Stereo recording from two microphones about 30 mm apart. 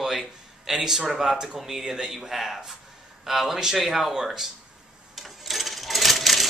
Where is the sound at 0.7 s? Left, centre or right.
Centre.